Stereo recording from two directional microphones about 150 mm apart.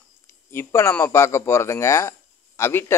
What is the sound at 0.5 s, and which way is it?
Speech, 15° left (ahead or behind).